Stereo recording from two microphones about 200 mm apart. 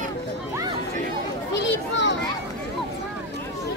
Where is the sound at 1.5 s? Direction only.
65° left (ahead or behind).